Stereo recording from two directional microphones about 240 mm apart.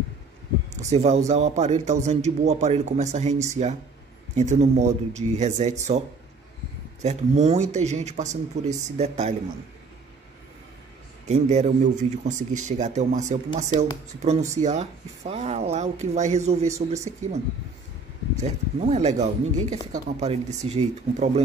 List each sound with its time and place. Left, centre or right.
0.7 s a man's voice: right
11.2 s a man's voice: right
18.4 s a man's voice: right